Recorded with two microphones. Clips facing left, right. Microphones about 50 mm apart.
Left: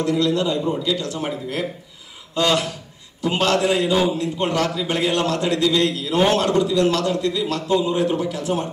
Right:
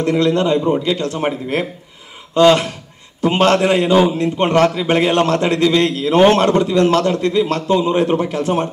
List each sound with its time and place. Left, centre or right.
0.0 s a man's voice: right